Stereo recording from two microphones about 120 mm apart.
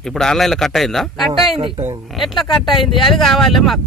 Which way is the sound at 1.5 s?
55° right (ahead or behind).